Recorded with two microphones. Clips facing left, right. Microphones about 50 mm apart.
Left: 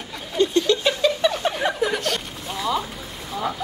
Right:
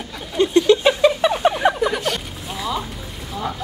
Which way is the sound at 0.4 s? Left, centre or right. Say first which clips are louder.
Right 5 dB; centre.